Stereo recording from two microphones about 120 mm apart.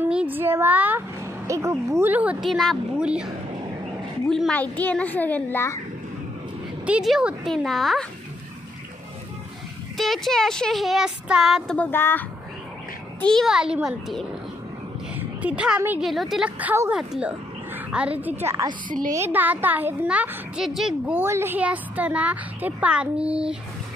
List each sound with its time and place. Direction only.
0.1 s a woman's voice: 10° right (ahead or behind)
2.4 s speech: centre (ahead or behind)
4.3 s a child's voice: 5° left (ahead or behind); by 5.8 s 20° left (ahead or behind)
6.9 s speech: 5° right (ahead or behind)
9.9 s speech: centre (ahead or behind)
11.7 s a child's voice: 15° left (ahead or behind)
13.3 s speech: centre (ahead or behind)
15.1 s a sound: 10° right (ahead or behind)
16.0 s speech: centre (ahead or behind)
16.4 s a woman's voice: 15° right (ahead or behind)
18.2 s a woman's voice: 20° right (ahead or behind); by 20.9 s 5° right (ahead or behind)
21.0 s a woman's voice: 15° right (ahead or behind)